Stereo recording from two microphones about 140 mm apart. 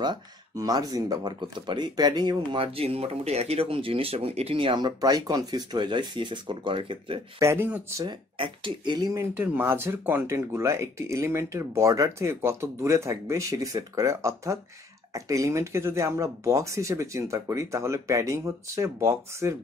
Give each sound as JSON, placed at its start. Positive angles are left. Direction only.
{"t": 0.0, "sound": "speech", "side_deg": -30}
{"t": 7.3, "sound": "speech", "side_deg": -15}
{"t": 8.0, "sound": "speech", "side_deg": -35}
{"t": 9.3, "sound": "speech", "side_deg": -15}